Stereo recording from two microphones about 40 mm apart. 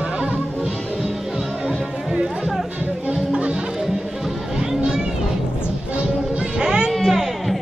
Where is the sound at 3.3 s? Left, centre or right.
Right.